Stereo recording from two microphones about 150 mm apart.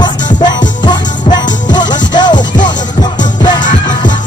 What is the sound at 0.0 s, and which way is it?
Music, 30° left (ahead or behind).